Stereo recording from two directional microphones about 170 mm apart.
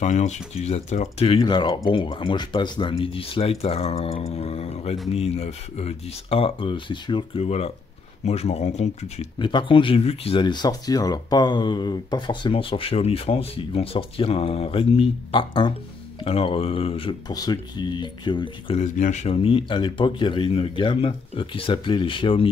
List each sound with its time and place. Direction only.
0.0 s speech: 45° left (ahead or behind)
9.4 s speech: 30° left (ahead or behind)
18.8 s speech: 45° left (ahead or behind)